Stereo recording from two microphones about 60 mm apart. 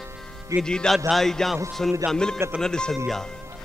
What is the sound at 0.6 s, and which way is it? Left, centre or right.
A man's voice, centre.